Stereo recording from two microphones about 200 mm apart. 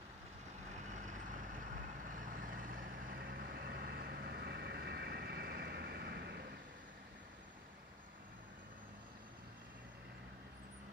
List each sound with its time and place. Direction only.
0.9 s vehicle: 40° right (ahead or behind); by 6.4 s 55° right (ahead or behind)